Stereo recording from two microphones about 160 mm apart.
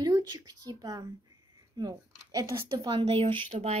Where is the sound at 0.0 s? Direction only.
25° right (ahead or behind).